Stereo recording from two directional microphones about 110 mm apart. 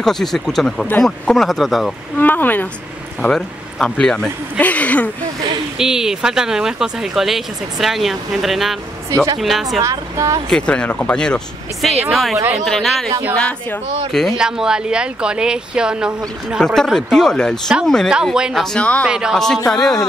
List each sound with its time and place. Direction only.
0.0 s speech: 5° left (ahead or behind)
2.1 s speech: 15° left (ahead or behind)
5.8 s speech: 5° right (ahead or behind)
9.1 s speech: 30° right (ahead or behind)
9.4 s speech: centre (ahead or behind)
9.8 s speech: 30° right (ahead or behind)
10.5 s speech: 10° left (ahead or behind)
14.4 s speech: 5° right (ahead or behind)
18.1 s speech: 5° right (ahead or behind)
18.6 s speech: 5° left (ahead or behind)
19.0 s speech: 5° right (ahead or behind)
19.3 s speech: 5° left (ahead or behind)